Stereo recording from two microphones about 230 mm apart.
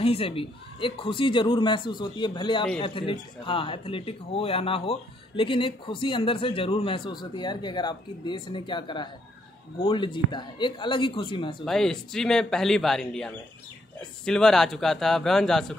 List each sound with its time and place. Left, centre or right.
0.0 s speech: left
11.6 s a man's voice: centre